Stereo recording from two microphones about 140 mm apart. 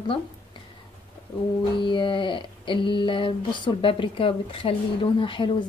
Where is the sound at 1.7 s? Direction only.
35° left (ahead or behind).